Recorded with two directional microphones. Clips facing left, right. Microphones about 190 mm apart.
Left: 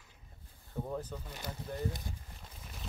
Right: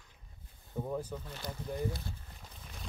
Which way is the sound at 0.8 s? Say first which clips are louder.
Right 2 dB; 5° right (ahead or behind).